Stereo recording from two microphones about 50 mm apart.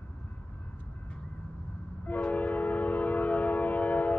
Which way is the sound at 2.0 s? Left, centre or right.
Left.